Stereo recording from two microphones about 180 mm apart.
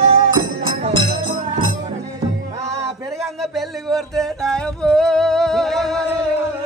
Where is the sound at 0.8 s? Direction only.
40° right (ahead or behind).